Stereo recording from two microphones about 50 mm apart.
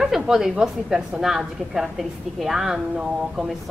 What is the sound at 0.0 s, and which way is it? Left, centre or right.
A woman's voice, centre.